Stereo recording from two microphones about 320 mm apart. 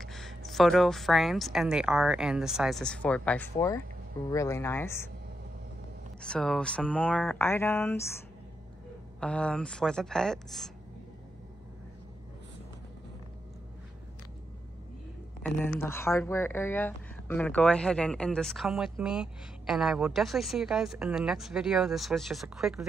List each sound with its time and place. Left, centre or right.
0.0 s speech: centre
6.2 s speech: centre
9.2 s speech: centre
15.8 s speech: centre